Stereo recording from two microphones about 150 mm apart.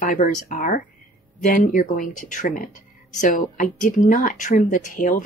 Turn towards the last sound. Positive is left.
turn(degrees=60)  # may be behind; listen again after turning